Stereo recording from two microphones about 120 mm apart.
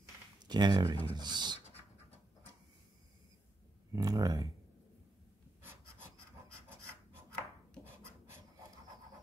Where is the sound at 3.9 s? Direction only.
30° right (ahead or behind).